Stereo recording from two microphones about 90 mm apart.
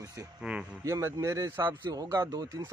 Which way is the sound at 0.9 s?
35° right (ahead or behind).